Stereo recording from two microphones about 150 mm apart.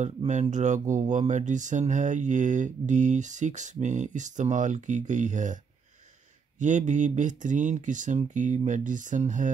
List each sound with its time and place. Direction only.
0.3 s speech: 55° right (ahead or behind)
6.6 s speech: 55° right (ahead or behind)